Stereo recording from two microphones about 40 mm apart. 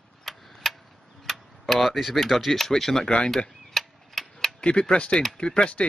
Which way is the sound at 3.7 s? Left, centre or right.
Centre.